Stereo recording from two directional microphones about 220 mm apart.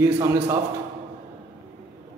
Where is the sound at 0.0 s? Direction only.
15° right (ahead or behind).